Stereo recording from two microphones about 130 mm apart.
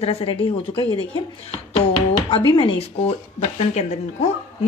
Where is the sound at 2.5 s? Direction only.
40° left (ahead or behind).